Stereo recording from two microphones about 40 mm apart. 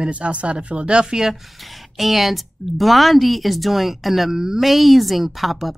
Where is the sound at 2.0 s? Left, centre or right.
Centre.